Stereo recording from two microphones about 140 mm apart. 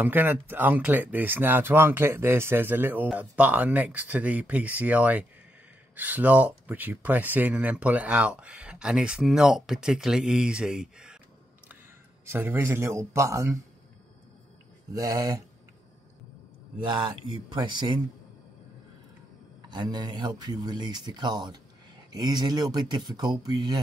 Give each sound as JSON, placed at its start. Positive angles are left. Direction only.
{"t": 0.0, "sound": "speech", "side_deg": -15}
{"t": 12.3, "sound": "speech", "side_deg": -15}
{"t": 14.9, "sound": "speech", "side_deg": -25}
{"t": 17.5, "sound": "speech", "side_deg": -35}
{"t": 19.7, "sound": "speech", "side_deg": -30}